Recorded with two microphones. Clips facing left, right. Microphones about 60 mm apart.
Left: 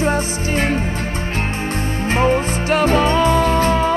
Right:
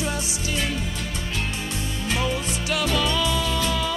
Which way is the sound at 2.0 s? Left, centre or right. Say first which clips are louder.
Left 10 dB; left.